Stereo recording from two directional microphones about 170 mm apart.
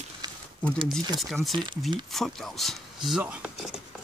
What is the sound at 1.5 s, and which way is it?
Speech, 25° right (ahead or behind).